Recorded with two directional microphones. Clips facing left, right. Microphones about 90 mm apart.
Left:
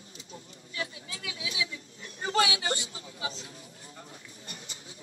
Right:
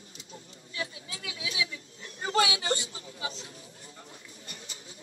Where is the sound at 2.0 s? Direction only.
30° right (ahead or behind).